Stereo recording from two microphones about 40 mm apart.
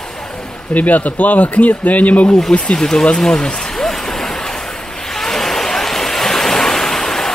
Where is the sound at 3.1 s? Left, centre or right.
Centre.